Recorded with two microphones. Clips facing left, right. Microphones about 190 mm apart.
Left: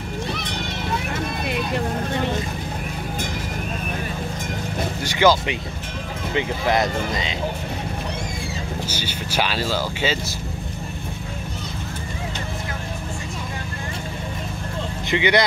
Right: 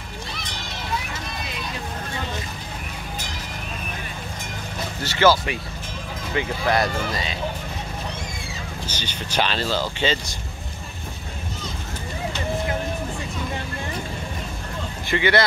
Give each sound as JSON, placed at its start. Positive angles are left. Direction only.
{"t": 1.4, "sound": "vehicle", "side_deg": 60}
{"t": 5.0, "sound": "speech", "side_deg": 15}
{"t": 8.8, "sound": "speech", "side_deg": 10}
{"t": 15.0, "sound": "speech", "side_deg": 20}